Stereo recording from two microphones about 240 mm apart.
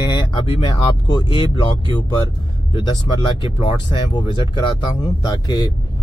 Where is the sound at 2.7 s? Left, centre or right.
Centre.